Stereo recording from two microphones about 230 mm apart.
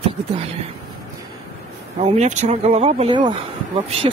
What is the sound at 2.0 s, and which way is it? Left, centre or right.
Speech, right.